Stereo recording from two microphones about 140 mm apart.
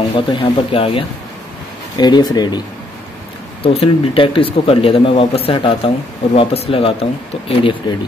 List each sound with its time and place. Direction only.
0.1 s speech: 40° left (ahead or behind)
2.0 s speech: 30° left (ahead or behind)
3.6 s speech: 45° left (ahead or behind)